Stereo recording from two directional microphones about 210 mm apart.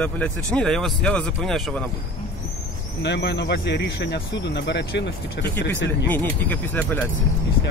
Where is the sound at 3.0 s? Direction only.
55° left (ahead or behind).